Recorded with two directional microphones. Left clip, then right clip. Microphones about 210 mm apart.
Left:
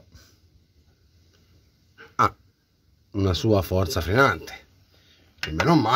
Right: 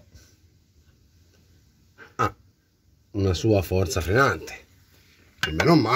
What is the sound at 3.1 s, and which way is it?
Speech, 30° left (ahead or behind).